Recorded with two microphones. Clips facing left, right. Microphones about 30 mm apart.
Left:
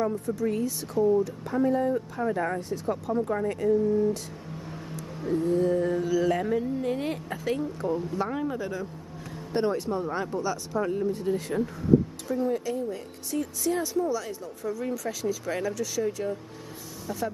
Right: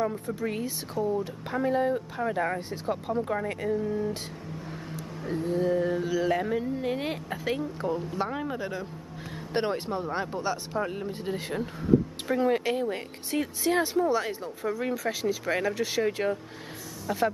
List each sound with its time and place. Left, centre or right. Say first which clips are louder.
0.4 s speech: left 4 dB; right
1.2 s a sound: left 3 dB; right
3.4 s speech: left 5 dB; right
4.6 s vehicle: even; centre
5.3 s a sound: left 2 dB; centre
9.5 s speech: left 2 dB; right
10.1 s a sound: left 1 dB; right
10.9 s speech: left 6 dB; right
12.3 s speech: right 3 dB; right